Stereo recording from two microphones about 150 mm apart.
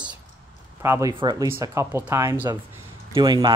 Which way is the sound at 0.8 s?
20° right (ahead or behind).